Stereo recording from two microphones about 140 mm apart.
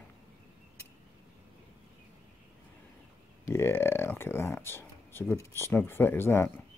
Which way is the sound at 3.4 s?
20° left (ahead or behind).